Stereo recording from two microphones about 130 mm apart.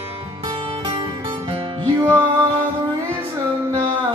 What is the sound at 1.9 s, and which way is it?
Music, 20° right (ahead or behind).